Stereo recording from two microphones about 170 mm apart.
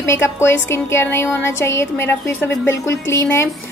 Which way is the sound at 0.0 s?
15° left (ahead or behind).